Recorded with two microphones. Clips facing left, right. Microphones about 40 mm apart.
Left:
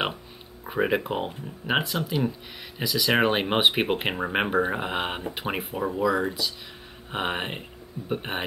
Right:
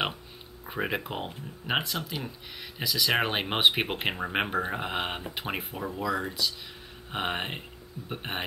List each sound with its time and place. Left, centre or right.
0.7 s speech: centre